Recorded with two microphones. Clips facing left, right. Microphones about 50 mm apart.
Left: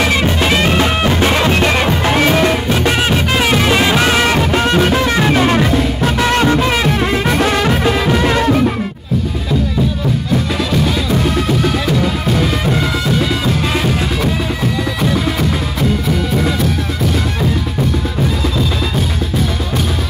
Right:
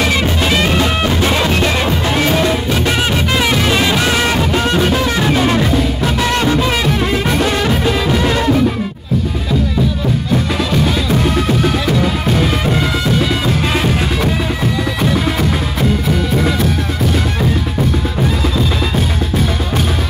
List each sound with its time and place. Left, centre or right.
0.0 s music: left
2.8 s music: left
13.2 s music: right